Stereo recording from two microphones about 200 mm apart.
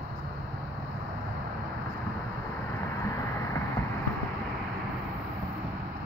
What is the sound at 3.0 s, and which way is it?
Vehicle, 15° left (ahead or behind).